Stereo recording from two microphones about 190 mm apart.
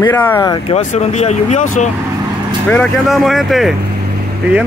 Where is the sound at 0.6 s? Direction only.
35° left (ahead or behind).